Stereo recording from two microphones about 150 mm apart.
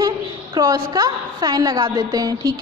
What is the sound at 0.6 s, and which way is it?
A woman's voice, 25° right (ahead or behind).